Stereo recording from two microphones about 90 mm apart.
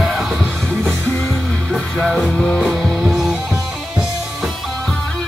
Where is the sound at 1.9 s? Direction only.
Centre (ahead or behind).